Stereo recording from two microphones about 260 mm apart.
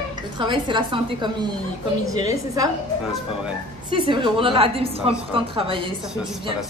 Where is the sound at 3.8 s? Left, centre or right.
Centre.